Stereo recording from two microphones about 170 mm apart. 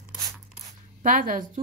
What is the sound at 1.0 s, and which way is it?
Speech, 50° right (ahead or behind).